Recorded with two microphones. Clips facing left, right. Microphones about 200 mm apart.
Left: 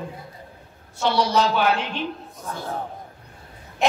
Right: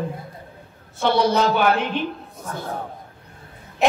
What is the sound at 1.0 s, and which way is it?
A woman's voice, 55° right (ahead or behind).